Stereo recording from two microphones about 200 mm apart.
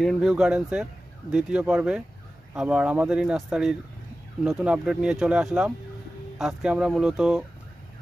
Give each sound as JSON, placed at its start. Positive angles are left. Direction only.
{"t": 0.0, "sound": "speech", "side_deg": 0}